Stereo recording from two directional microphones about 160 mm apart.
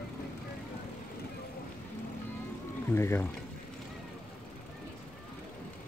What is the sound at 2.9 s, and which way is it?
Speech, 15° left (ahead or behind).